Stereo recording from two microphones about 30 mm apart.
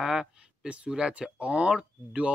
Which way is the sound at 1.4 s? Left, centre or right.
Right.